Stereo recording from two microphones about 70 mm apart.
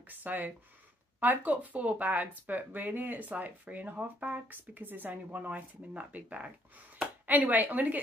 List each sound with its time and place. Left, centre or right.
0.1 s speech: right